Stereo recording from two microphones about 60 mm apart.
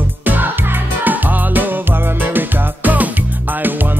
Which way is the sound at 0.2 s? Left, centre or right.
Right.